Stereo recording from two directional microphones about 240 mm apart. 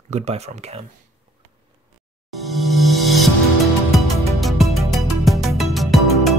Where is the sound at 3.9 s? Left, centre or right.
Centre.